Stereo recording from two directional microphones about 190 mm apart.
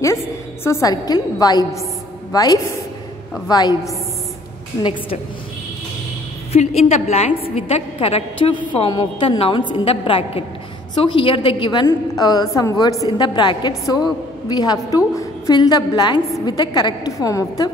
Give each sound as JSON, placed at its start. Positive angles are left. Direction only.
{"t": 0.7, "sound": "a woman's voice", "side_deg": 15}
{"t": 6.9, "sound": "a woman's voice", "side_deg": 35}